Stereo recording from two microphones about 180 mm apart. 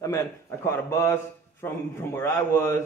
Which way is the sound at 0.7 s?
15° left (ahead or behind).